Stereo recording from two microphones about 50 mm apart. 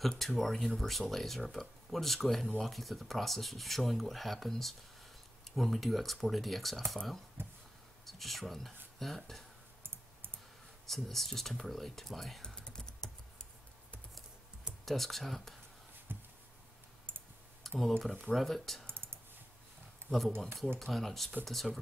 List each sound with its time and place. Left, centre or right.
0.4 s speech: centre
7.4 s a sound: right
8.0 s speech: centre
10.9 s speech: centre
12.4 s typing: centre
14.9 s speech: centre
16.1 s a sound: right
17.1 s typing: right
17.6 s speech: centre
18.9 s clicking: right
20.1 s speech: centre